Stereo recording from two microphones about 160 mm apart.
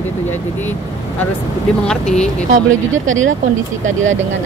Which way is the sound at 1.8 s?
5° left (ahead or behind).